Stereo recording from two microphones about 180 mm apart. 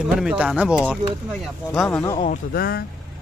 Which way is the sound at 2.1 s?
40° left (ahead or behind).